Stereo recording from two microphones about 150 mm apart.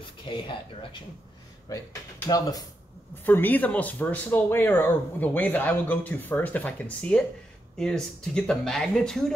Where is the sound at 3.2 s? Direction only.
10° left (ahead or behind).